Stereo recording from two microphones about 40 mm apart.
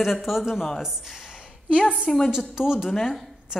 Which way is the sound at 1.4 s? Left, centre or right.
Right.